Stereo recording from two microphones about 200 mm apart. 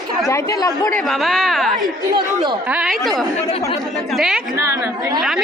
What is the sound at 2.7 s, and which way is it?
Speech, 5° right (ahead or behind).